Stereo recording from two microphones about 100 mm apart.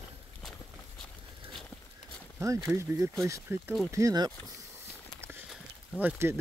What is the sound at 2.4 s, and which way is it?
Speech, 30° right (ahead or behind).